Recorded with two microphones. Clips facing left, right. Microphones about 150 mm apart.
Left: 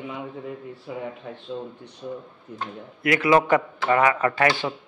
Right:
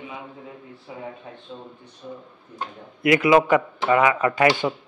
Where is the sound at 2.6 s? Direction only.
15° right (ahead or behind).